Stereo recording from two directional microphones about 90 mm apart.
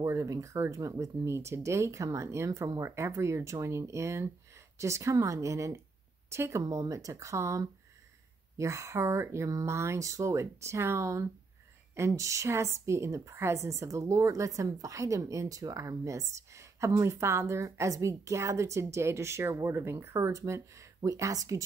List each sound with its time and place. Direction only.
0.0 s a woman's voice: 35° right (ahead or behind)